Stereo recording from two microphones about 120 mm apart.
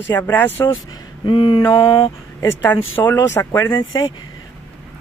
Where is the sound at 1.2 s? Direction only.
40° left (ahead or behind).